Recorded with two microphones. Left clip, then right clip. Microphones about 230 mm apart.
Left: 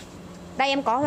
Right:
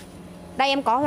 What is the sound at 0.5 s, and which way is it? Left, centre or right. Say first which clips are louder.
Speech: right 2 dB; right.